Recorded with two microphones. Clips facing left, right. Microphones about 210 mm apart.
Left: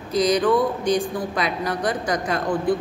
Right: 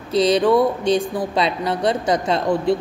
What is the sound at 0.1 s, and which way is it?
A woman's voice, 25° right (ahead or behind).